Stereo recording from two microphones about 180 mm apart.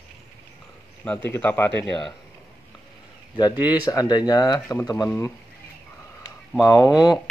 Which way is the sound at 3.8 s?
20° left (ahead or behind).